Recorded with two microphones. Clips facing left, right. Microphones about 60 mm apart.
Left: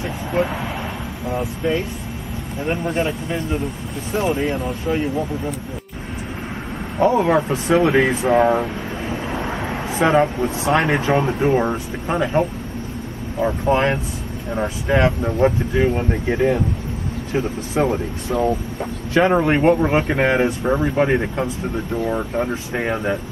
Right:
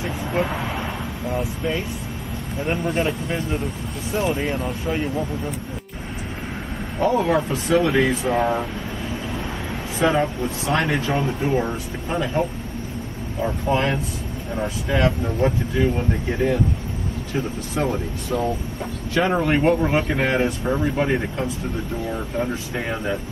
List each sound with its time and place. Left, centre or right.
0.0 s vehicle: centre
2.6 s speech: centre
7.0 s speech: centre
9.1 s vehicle: left
11.1 s speech: left
17.8 s speech: centre